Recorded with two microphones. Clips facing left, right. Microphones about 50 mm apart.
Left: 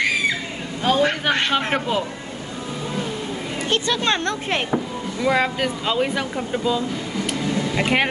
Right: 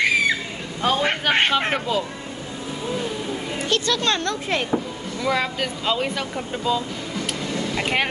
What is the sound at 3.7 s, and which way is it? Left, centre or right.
Speech, left.